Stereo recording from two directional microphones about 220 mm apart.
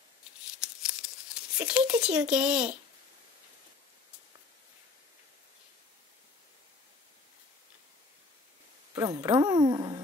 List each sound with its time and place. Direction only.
0.6 s crumpling: 5° right (ahead or behind)
8.9 s speech: 15° right (ahead or behind)